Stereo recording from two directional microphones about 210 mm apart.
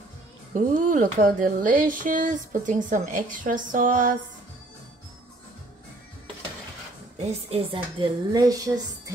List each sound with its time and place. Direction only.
0.6 s speech: 40° right (ahead or behind)
7.4 s a woman's voice: 25° right (ahead or behind)